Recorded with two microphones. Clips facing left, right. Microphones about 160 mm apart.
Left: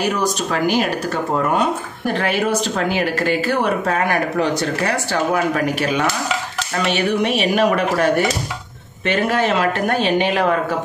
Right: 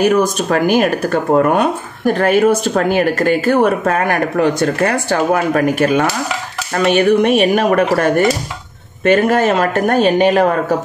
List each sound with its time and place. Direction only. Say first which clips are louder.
0.0 s speech: right 7 dB; 50° right (ahead or behind)